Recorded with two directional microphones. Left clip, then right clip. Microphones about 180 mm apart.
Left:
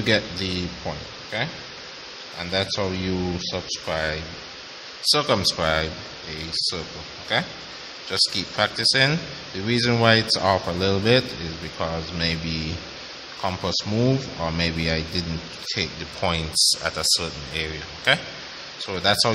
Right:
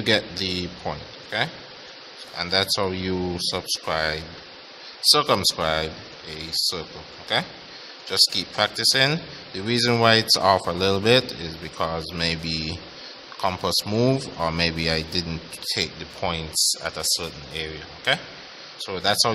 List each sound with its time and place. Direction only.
0.0 s speech: 20° right (ahead or behind)
16.2 s speech: 5° right (ahead or behind)